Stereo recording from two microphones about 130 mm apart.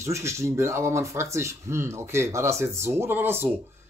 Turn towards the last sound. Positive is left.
turn(degrees=-15)  # may be behind; listen again after turning